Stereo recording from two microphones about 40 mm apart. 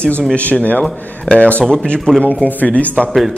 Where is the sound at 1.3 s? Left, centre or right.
Left.